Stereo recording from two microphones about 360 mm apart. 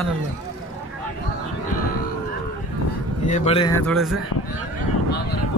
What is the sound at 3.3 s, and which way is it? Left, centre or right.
Speech, centre.